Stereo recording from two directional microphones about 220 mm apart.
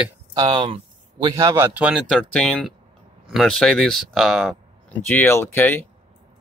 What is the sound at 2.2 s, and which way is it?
Speech, 5° left (ahead or behind).